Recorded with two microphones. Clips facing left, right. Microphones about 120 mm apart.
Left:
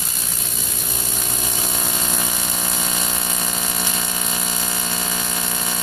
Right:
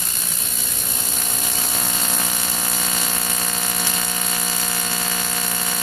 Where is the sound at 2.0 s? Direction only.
15° left (ahead or behind).